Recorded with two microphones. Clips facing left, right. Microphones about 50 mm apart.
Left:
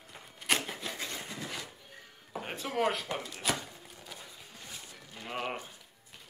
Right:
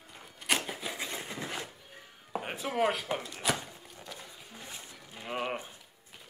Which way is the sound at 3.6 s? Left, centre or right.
Centre.